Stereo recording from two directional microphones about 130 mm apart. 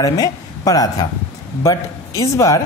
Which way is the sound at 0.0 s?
25° left (ahead or behind).